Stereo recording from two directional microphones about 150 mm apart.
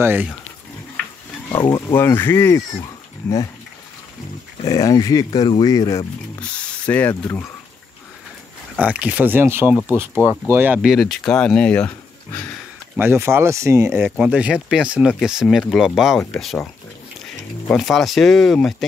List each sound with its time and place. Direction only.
0.0 s speech: 15° right (ahead or behind)
1.5 s speech: 30° left (ahead or behind)
2.0 s speech: 15° left (ahead or behind)
2.8 s a sound: 25° left (ahead or behind)
4.6 s speech: 25° left (ahead or behind)
6.4 s speech: 5° left (ahead or behind)
8.7 s speech: 10° right (ahead or behind); by 12.4 s 10° left (ahead or behind)
12.9 s speech: 15° right (ahead or behind); by 18.9 s centre (ahead or behind)